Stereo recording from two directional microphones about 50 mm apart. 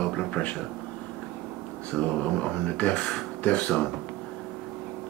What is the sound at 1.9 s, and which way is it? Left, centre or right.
Speech, left.